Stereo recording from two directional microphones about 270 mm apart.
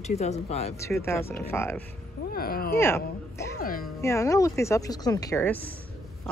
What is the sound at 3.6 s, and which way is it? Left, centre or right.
Speech, left.